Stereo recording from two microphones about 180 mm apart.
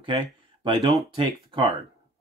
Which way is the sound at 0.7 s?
30° right (ahead or behind).